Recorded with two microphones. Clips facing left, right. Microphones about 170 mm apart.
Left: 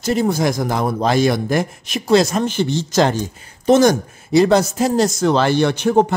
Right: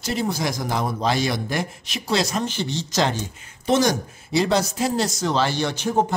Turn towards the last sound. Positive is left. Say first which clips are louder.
# left 7 dB
turn(degrees=65)  # may be behind; listen again after turning